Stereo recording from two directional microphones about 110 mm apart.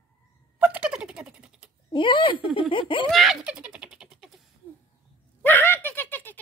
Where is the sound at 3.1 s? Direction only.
Centre (ahead or behind).